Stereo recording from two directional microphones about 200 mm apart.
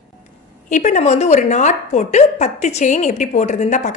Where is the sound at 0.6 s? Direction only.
35° left (ahead or behind).